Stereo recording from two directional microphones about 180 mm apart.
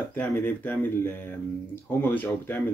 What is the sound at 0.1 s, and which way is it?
Speech, 10° left (ahead or behind).